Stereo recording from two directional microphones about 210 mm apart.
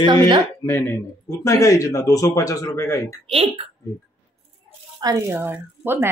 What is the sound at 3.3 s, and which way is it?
Speech, 30° right (ahead or behind).